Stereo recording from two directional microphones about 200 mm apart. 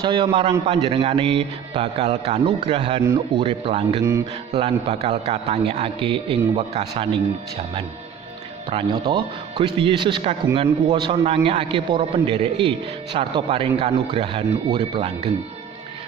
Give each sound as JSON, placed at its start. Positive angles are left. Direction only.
{"t": 0.0, "sound": "a man's voice", "side_deg": -25}
{"t": 8.6, "sound": "a man's voice", "side_deg": -25}